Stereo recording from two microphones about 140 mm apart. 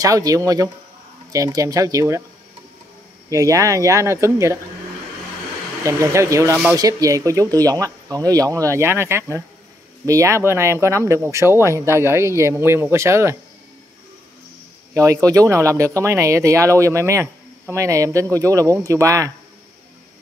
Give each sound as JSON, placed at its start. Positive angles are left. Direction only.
{"t": 0.0, "sound": "speech", "side_deg": -25}
{"t": 3.3, "sound": "speech", "side_deg": -25}
{"t": 5.9, "sound": "speech", "side_deg": -20}
{"t": 15.0, "sound": "speech", "side_deg": -25}